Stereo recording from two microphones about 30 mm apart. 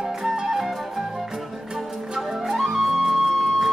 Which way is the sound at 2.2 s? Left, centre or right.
Centre.